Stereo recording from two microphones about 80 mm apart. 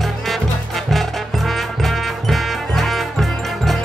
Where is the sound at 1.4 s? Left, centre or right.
Centre.